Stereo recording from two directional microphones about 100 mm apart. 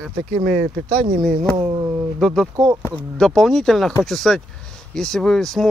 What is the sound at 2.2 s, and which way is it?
Speech, centre (ahead or behind).